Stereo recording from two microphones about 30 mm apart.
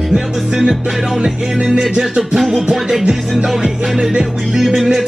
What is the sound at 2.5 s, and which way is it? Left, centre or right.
Music, centre.